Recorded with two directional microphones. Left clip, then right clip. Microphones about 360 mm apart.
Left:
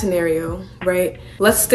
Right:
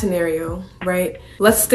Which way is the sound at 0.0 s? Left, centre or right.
Centre.